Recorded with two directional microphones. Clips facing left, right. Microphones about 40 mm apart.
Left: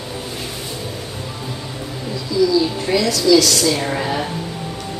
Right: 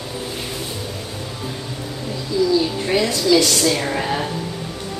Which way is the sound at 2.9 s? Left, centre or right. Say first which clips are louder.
Left 2 dB; right.